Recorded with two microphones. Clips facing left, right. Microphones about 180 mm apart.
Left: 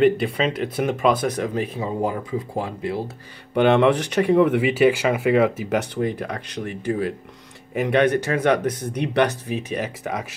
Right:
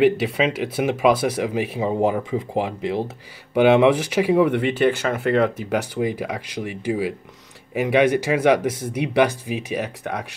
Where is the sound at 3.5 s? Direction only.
5° right (ahead or behind).